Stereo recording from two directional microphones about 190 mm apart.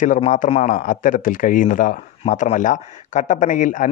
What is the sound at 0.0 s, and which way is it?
A man's voice, 40° left (ahead or behind).